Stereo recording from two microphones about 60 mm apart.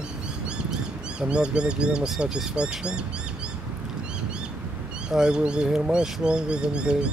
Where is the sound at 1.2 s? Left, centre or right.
Centre.